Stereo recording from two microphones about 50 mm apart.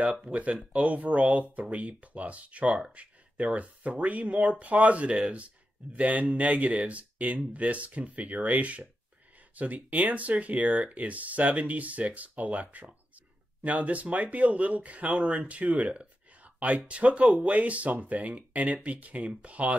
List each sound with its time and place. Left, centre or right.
0.0 s speech: right